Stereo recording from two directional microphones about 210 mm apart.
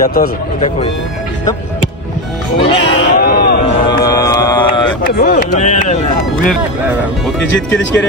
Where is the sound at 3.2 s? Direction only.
45° left (ahead or behind).